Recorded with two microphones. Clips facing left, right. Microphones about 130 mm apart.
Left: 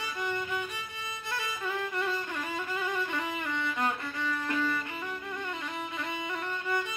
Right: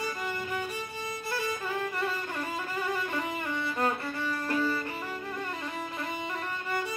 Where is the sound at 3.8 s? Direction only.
35° right (ahead or behind).